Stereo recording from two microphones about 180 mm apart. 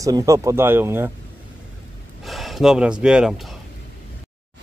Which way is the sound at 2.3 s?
Centre (ahead or behind).